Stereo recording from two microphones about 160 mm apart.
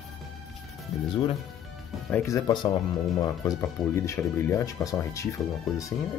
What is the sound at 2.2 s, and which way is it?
Speech, 20° left (ahead or behind).